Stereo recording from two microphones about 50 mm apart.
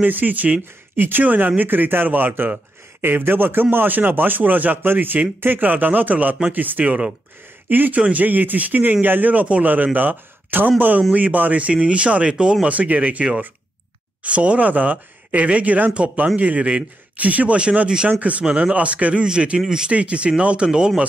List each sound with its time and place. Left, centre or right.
0.0 s speech: right
0.9 s speech: right; by 21.0 s centre